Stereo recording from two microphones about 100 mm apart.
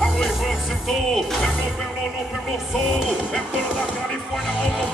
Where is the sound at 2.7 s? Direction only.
5° right (ahead or behind).